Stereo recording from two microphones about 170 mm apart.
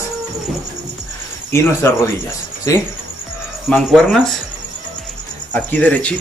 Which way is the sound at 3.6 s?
5° left (ahead or behind).